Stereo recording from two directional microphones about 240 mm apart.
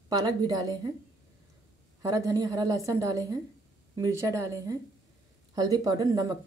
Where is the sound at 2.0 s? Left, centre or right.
Centre.